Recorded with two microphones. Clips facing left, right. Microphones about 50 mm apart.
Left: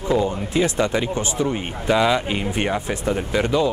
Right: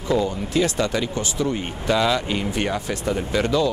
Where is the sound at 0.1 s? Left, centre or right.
Left.